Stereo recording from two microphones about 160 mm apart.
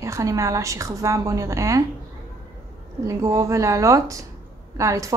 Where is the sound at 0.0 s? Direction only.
20° right (ahead or behind).